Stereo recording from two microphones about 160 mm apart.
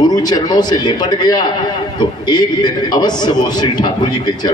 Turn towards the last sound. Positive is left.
turn(degrees=25)  # may be behind; listen again after turning